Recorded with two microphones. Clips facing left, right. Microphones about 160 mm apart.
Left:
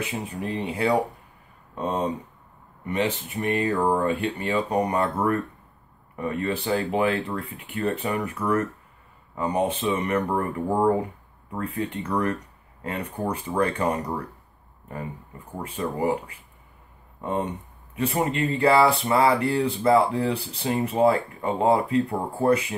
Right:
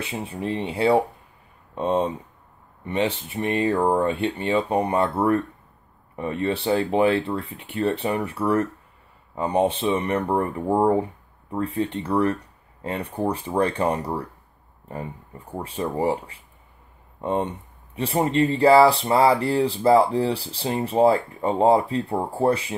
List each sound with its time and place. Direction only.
0.0 s speech: 30° right (ahead or behind)
15.5 s speech: 30° right (ahead or behind)